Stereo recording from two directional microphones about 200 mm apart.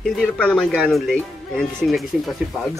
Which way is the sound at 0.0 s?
Centre (ahead or behind).